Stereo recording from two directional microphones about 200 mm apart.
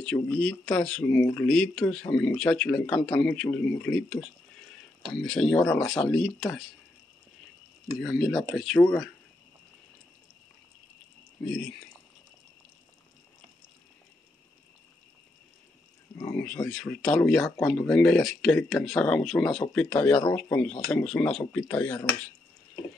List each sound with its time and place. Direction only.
0.0 s speech: 5° left (ahead or behind)
8.0 s speech: centre (ahead or behind)
11.4 s speech: 5° left (ahead or behind)
16.2 s speech: 10° left (ahead or behind)